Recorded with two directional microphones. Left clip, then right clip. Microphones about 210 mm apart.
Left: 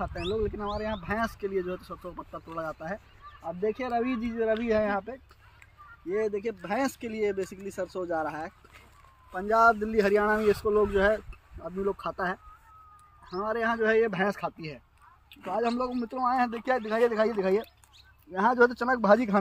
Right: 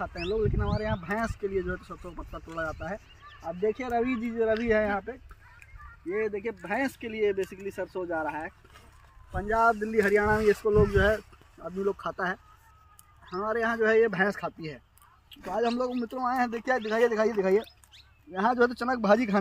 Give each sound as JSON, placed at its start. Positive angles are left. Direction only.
{"t": 0.1, "sound": "speech", "side_deg": 25}
{"t": 1.0, "sound": "speech", "side_deg": 10}
{"t": 4.6, "sound": "speech", "side_deg": 25}
{"t": 6.0, "sound": "speech", "side_deg": 60}
{"t": 10.7, "sound": "speech", "side_deg": 15}